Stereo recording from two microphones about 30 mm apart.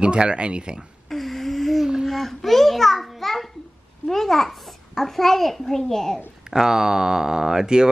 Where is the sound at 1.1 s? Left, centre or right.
Centre.